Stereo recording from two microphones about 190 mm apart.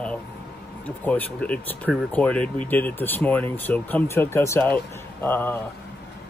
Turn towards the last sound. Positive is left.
turn(degrees=10)  # may be behind; listen again after turning